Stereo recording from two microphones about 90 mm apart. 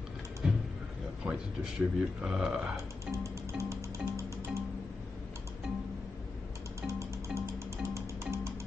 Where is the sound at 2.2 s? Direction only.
5° right (ahead or behind).